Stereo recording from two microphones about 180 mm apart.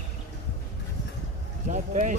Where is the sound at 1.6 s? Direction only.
40° right (ahead or behind).